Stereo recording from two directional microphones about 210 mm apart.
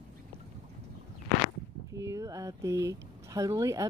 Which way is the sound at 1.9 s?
15° right (ahead or behind).